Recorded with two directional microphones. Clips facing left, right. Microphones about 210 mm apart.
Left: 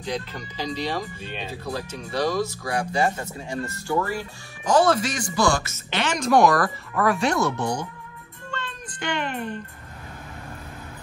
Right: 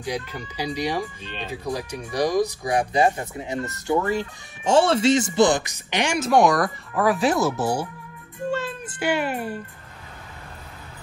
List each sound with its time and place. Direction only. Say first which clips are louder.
0.0 s speech: right 1 dB; 10° right (ahead or behind)
1.2 s speech: left 1 dB; 10° left (ahead or behind)
1.5 s speech: right 5 dB; 15° right (ahead or behind)
8.5 s a sound: right 9 dB; 10° right (ahead or behind)